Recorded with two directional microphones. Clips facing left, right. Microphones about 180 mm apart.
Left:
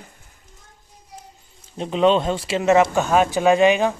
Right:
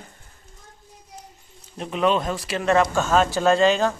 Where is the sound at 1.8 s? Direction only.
30° left (ahead or behind).